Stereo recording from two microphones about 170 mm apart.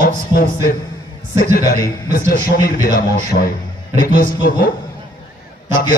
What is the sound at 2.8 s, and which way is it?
A man's voice, 60° left (ahead or behind).